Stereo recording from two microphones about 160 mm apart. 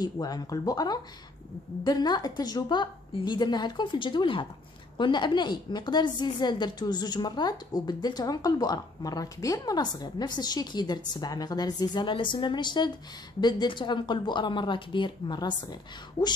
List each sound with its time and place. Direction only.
0.0 s a woman's voice: 25° left (ahead or behind)